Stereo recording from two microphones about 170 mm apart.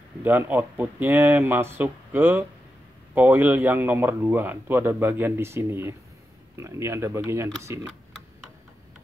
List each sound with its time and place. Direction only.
0.2 s speech: 10° right (ahead or behind)